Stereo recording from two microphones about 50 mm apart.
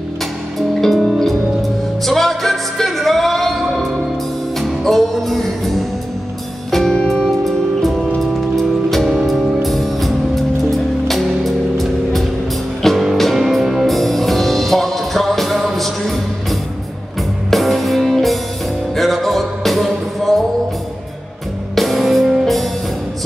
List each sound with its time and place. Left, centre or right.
0.6 s music: centre
7.0 s music: centre
7.2 s music: centre
21.7 s music: centre